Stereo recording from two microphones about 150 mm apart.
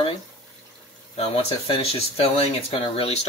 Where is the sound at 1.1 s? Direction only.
40° left (ahead or behind).